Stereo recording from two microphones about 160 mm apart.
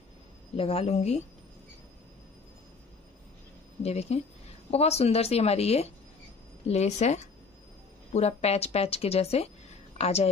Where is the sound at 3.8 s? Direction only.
40° left (ahead or behind).